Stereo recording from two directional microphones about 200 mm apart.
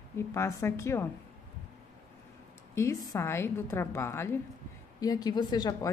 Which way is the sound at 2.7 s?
15° left (ahead or behind).